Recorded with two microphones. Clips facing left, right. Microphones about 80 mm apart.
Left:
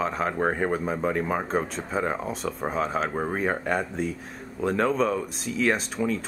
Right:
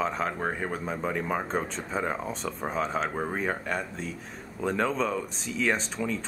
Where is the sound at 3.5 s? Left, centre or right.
Centre.